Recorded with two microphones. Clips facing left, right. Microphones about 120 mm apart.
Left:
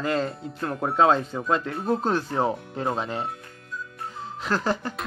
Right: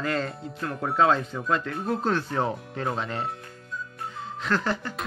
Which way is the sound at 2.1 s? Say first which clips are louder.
Left 2 dB; 15° left (ahead or behind).